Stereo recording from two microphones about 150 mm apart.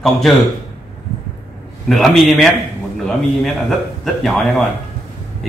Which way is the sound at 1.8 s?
Centre (ahead or behind).